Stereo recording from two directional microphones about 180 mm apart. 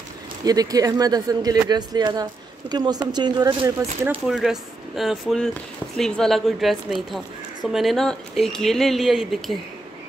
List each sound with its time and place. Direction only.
0.5 s speech: 20° right (ahead or behind)
4.0 s speech: 5° right (ahead or behind)